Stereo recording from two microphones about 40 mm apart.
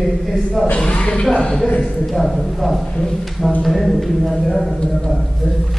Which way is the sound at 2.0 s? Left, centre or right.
Centre.